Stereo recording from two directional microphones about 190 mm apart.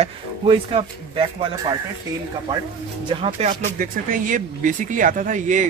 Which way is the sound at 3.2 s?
30° right (ahead or behind).